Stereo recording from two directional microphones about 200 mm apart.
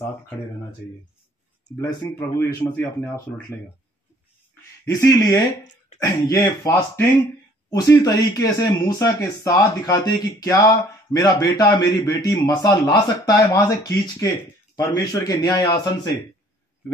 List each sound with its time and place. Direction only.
1.8 s speech: 15° left (ahead or behind)
4.8 s speech: 15° left (ahead or behind)